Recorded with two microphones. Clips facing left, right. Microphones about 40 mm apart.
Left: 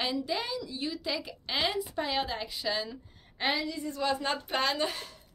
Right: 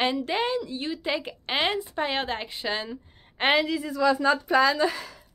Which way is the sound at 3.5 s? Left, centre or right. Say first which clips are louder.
Right 9 dB; right.